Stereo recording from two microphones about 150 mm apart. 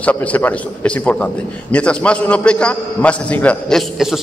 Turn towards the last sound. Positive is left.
turn(degrees=0)  # may be behind; listen again after turning